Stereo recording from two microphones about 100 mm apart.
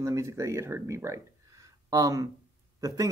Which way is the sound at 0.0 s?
30° right (ahead or behind).